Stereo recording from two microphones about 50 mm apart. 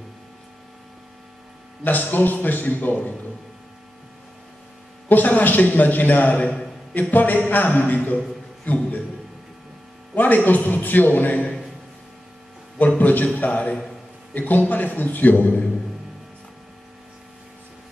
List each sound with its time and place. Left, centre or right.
1.9 s a man's voice: left
5.0 s a man's voice: left
6.9 s a man's voice: left
10.1 s a man's voice: left
12.7 s a man's voice: left